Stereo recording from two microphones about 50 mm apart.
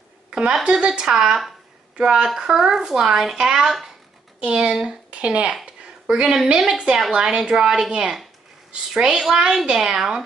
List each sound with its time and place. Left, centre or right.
0.3 s a sound: centre
0.7 s a woman's voice: centre
1.1 s speech: centre
2.0 s a woman's voice: centre